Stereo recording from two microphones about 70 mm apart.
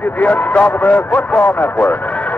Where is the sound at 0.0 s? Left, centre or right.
Left.